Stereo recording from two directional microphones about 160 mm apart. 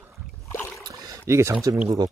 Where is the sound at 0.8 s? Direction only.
25° right (ahead or behind).